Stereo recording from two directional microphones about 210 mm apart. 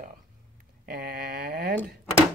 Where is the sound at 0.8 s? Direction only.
45° right (ahead or behind).